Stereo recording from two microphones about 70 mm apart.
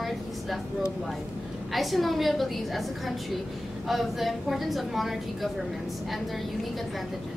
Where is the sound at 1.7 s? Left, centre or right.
Centre.